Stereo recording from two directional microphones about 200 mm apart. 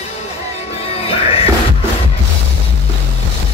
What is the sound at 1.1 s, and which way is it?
Music, 30° left (ahead or behind).